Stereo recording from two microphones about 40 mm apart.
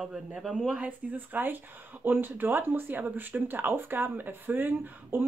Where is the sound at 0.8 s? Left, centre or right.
Right.